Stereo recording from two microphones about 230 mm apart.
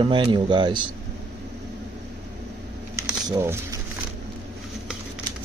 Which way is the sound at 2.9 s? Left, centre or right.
Centre.